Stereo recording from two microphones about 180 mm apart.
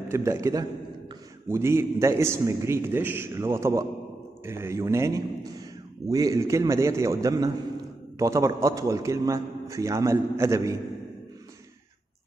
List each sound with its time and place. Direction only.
0.1 s a man's voice: 15° right (ahead or behind)